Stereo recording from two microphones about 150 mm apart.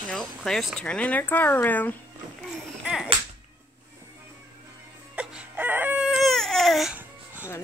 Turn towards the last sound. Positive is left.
turn(degrees=0)  # may be behind; listen again after turning